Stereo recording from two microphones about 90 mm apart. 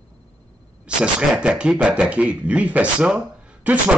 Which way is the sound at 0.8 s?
10° right (ahead or behind).